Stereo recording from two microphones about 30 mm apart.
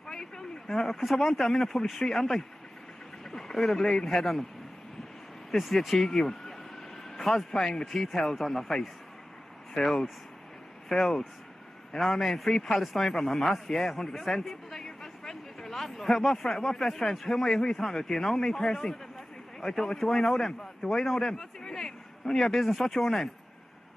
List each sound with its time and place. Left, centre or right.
0.1 s a man's voice: centre
5.6 s speech: centre
10.9 s a man's voice: centre
12.5 s speech: centre
12.8 s a man's voice: centre